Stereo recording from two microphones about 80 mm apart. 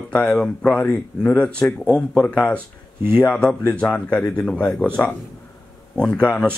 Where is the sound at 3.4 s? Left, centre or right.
Centre.